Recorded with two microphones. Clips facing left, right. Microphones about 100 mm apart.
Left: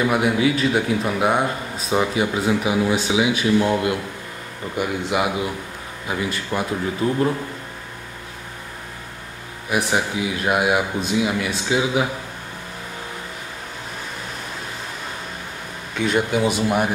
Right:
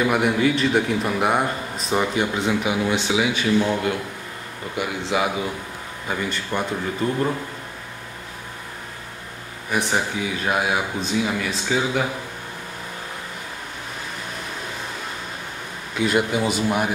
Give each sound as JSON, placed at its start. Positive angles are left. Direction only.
{"t": 0.0, "sound": "a man's voice", "side_deg": 0}
{"t": 5.0, "sound": "a man's voice", "side_deg": 5}
{"t": 9.7, "sound": "a man's voice", "side_deg": 5}
{"t": 15.9, "sound": "a man's voice", "side_deg": 0}